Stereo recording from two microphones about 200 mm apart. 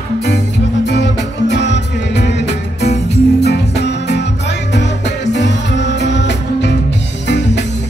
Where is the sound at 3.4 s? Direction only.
55° left (ahead or behind).